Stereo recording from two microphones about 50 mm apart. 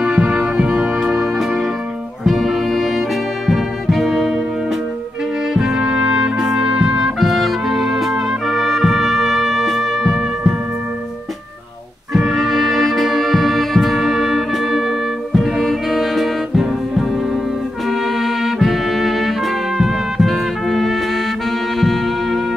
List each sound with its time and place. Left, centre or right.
0.0 s music: centre
5.6 s trumpet: centre
7.2 s music: centre
12.1 s music: centre